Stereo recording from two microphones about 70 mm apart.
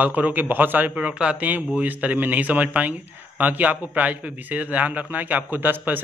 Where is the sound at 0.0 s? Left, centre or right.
Right.